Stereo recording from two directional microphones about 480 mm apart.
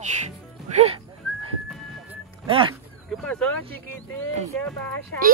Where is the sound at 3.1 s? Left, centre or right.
Centre.